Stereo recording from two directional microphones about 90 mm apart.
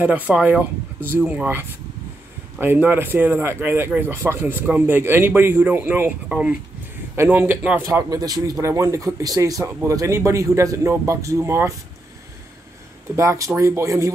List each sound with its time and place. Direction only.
0.0 s speech: 15° right (ahead or behind)
7.8 s speech: 35° right (ahead or behind)
13.1 s speech: 40° right (ahead or behind)